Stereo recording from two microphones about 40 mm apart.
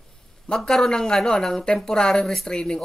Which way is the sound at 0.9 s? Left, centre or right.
Centre.